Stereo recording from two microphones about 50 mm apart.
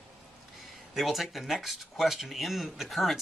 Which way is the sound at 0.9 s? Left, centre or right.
Centre.